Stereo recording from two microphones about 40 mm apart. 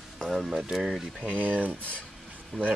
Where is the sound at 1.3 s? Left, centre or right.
Right.